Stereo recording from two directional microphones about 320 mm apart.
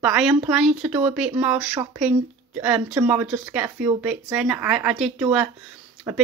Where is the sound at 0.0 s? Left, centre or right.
Centre.